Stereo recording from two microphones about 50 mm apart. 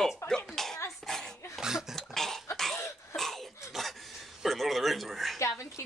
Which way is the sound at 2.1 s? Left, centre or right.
Centre.